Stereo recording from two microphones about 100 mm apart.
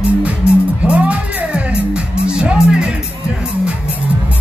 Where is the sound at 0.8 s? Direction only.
15° right (ahead or behind).